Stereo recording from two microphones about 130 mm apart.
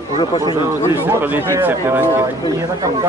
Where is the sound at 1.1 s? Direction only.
15° right (ahead or behind).